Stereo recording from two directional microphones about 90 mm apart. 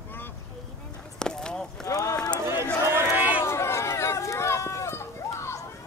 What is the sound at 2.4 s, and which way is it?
Run, 30° right (ahead or behind).